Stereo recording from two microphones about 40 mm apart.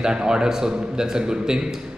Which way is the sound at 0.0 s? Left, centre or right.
Centre.